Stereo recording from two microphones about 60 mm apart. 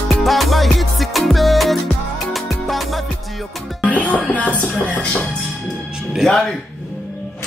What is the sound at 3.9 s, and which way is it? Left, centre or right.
Music, left.